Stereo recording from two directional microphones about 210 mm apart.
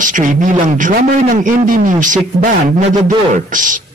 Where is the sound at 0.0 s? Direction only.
40° right (ahead or behind).